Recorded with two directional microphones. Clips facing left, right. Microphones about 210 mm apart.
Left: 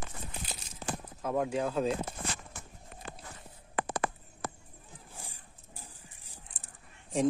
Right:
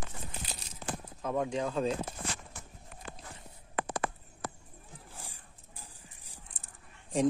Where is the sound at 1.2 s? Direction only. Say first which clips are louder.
Left 1 dB; 5° left (ahead or behind).